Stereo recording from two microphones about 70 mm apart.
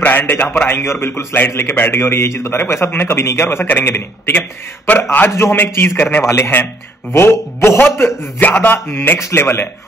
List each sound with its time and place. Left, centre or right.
0.0 s a man's voice: left
8.4 s a man's voice: left